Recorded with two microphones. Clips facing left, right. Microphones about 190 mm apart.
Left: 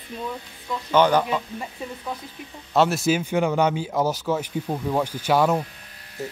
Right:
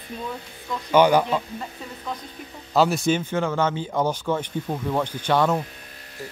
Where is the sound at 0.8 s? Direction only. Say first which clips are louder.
Right 2 dB; 10° right (ahead or behind).